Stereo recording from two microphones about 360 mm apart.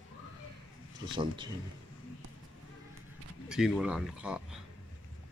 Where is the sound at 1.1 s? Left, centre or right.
Centre.